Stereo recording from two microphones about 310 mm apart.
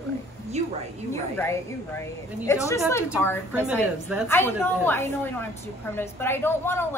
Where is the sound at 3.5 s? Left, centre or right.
Centre.